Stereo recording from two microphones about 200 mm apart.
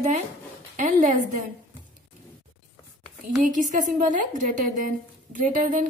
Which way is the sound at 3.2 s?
40° right (ahead or behind).